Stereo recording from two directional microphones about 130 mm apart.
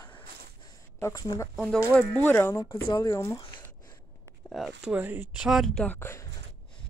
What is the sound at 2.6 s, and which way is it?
Speech, 40° left (ahead or behind).